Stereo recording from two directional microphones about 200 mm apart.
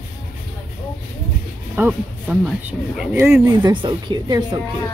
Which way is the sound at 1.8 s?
5° right (ahead or behind).